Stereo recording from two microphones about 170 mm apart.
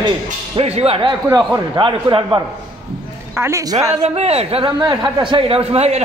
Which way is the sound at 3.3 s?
15° right (ahead or behind).